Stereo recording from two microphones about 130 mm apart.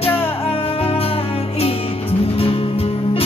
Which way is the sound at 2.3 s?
50° left (ahead or behind).